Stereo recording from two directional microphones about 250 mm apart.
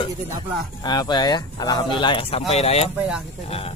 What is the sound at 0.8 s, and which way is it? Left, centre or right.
Speech, centre.